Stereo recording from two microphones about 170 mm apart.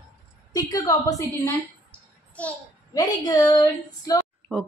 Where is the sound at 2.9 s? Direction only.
25° left (ahead or behind).